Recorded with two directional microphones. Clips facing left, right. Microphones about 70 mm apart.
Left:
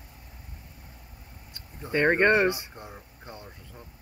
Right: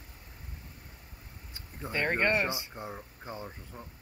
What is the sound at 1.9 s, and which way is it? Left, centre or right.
Speech, left.